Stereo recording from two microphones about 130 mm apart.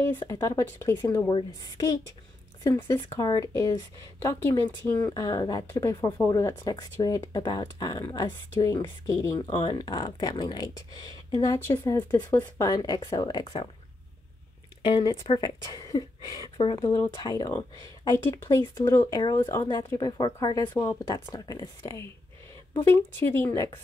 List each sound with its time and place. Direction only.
0.1 s speech: 20° left (ahead or behind)
1.3 s speech: 30° left (ahead or behind)
5.1 s speech: 30° left (ahead or behind)
15.2 s speech: 30° left (ahead or behind)
19.6 s speech: 35° left (ahead or behind)